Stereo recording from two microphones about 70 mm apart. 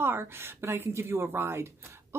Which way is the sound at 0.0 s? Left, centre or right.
Right.